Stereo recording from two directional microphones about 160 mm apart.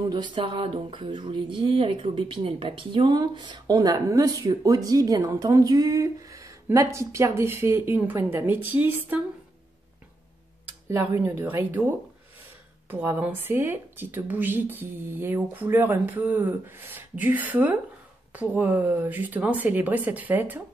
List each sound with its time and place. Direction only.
0.1 s speech: 30° right (ahead or behind); by 9.2 s 10° right (ahead or behind)
10.9 s speech: 15° right (ahead or behind)
12.9 s speech: 15° right (ahead or behind)